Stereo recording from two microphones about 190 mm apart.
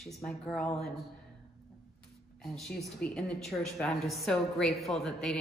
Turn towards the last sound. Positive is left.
turn(degrees=0)  # may be behind; listen again after turning